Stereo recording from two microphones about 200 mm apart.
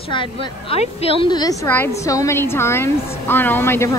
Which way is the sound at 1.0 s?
20° left (ahead or behind).